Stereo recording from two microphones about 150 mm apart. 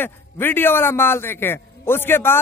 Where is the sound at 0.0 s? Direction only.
15° left (ahead or behind).